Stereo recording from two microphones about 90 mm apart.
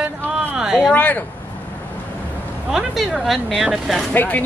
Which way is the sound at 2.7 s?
Centre (ahead or behind).